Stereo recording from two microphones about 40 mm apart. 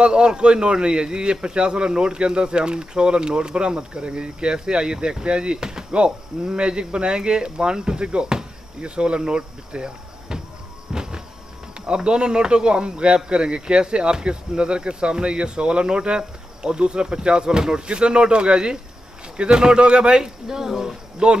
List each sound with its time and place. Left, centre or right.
0.0 s speech: right
10.9 s a sound: centre
11.9 s speech: right
20.4 s speech: centre
21.2 s speech: right